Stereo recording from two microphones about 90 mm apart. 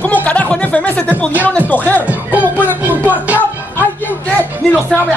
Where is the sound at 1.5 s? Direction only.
20° left (ahead or behind).